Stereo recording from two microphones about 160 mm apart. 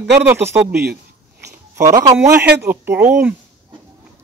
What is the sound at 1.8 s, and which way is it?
Speech, 20° right (ahead or behind).